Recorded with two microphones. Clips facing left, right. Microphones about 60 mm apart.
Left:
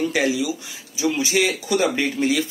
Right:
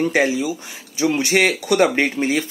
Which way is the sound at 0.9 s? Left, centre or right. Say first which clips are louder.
Right 3 dB; right.